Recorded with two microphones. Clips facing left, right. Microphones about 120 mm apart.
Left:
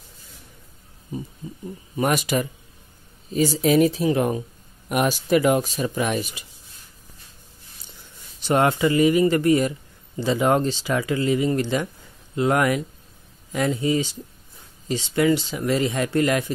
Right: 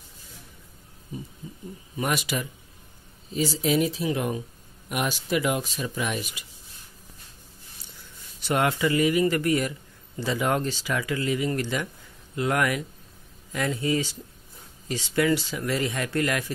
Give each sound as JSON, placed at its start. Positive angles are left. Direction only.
{"t": 2.0, "sound": "speech", "side_deg": 45}
{"t": 8.4, "sound": "a man's voice", "side_deg": 25}